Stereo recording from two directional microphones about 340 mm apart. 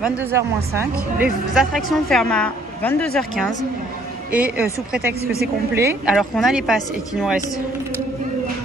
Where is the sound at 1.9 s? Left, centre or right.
Centre.